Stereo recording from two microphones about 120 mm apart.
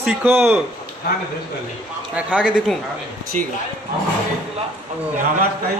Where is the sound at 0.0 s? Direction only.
10° right (ahead or behind).